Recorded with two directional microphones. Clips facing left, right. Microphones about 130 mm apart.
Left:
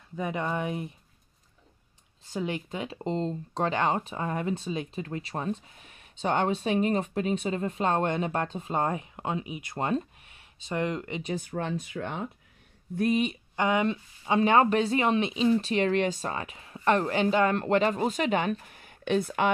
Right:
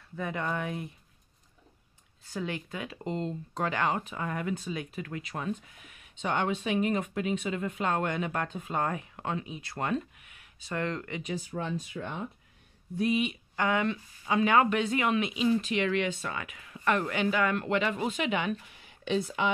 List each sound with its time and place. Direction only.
0.1 s speech: 20° left (ahead or behind)
2.2 s speech: 20° left (ahead or behind)
11.3 s speech: 60° left (ahead or behind)
12.9 s speech: 45° left (ahead or behind)
13.6 s speech: 20° left (ahead or behind); by 19.5 s 55° left (ahead or behind)